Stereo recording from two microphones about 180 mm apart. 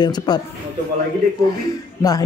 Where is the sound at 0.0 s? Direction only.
25° left (ahead or behind).